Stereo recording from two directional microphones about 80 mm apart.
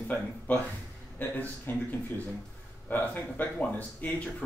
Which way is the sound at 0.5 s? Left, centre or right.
Left.